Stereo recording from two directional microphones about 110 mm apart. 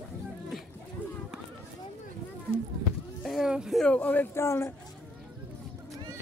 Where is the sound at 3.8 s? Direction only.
10° left (ahead or behind).